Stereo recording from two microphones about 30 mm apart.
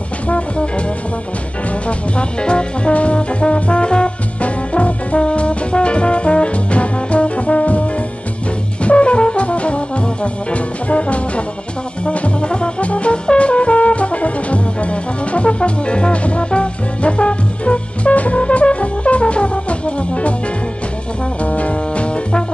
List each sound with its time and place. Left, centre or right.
0.3 s brass instrument: left
1.9 s brass instrument: left
4.4 s brass instrument: left
12.8 s music: left
21.4 s music: left